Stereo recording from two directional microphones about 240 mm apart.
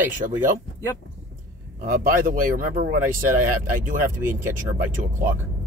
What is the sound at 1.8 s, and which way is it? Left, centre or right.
Speech, right.